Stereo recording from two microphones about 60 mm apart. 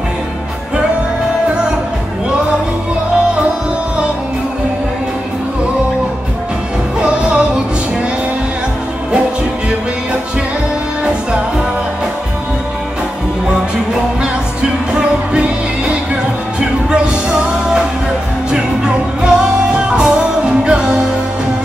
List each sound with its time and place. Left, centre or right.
7.0 s music: centre
16.5 s music: centre
19.2 s music: centre